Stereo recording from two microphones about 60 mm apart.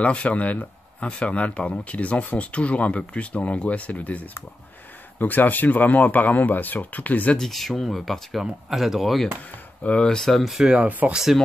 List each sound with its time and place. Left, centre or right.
0.0 s speech: left
7.3 s speech: centre
10.6 s speech: centre
10.9 s speech: right